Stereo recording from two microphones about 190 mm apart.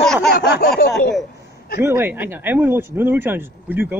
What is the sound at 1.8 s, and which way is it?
Speech, 10° right (ahead or behind).